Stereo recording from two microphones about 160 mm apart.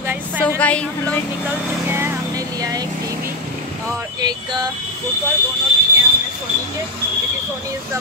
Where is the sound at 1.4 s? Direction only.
15° right (ahead or behind).